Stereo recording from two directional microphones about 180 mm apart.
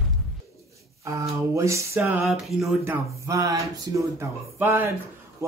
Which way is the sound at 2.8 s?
15° right (ahead or behind).